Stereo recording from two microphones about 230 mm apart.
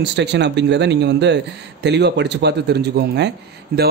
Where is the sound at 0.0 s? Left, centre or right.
Right.